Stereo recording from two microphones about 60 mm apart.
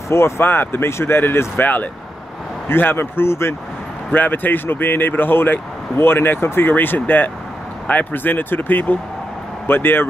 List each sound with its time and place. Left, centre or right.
0.1 s speech: left
2.7 s speech: left
4.1 s speech: left